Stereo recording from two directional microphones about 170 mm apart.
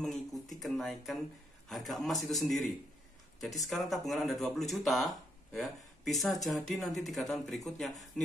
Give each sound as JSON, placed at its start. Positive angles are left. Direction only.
{"t": 0.0, "sound": "speech", "side_deg": 0}